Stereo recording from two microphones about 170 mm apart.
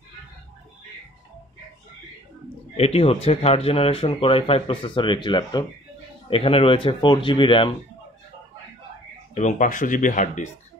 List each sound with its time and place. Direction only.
2.8 s speech: 35° left (ahead or behind)
9.3 s speech: 45° left (ahead or behind)